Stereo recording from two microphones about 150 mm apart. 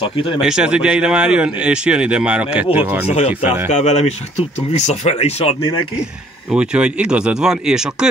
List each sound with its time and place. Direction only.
0.0 s speech: 35° left (ahead or behind)
0.4 s speech: 5° right (ahead or behind)
3.1 s speech: 45° left (ahead or behind)
3.4 s speech: 15° right (ahead or behind)
3.7 s speech: 45° left (ahead or behind)
6.5 s speech: 5° right (ahead or behind)